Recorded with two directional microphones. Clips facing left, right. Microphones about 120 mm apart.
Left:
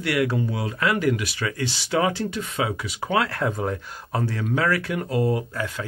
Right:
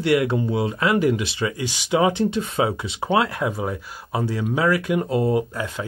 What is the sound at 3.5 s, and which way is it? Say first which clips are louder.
Speech: even; 5° right (ahead or behind).